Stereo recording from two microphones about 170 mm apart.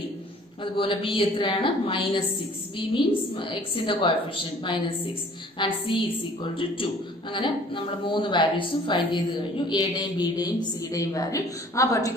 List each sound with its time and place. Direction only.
0.7 s a woman's voice: 30° left (ahead or behind)